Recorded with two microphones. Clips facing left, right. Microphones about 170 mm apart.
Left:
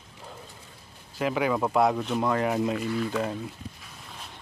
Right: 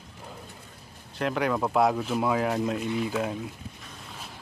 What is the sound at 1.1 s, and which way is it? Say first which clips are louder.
Speech: left 1 dB; centre (ahead or behind).